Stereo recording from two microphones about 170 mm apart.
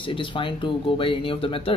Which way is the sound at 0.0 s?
30° left (ahead or behind).